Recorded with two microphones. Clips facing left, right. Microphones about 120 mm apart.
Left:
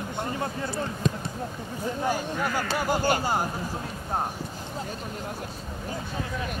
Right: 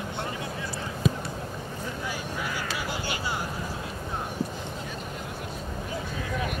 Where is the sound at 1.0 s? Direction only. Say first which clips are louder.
Right 2 dB; 5° right (ahead or behind).